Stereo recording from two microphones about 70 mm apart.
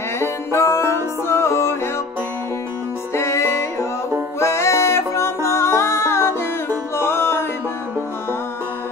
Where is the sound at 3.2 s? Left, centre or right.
Left.